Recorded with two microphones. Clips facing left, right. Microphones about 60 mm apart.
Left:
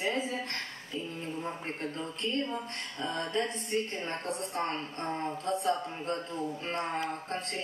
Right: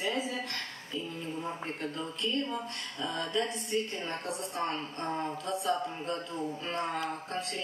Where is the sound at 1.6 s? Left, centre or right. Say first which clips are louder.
Even; left.